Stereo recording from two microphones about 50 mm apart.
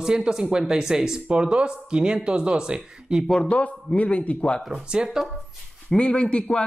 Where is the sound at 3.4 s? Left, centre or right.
Left.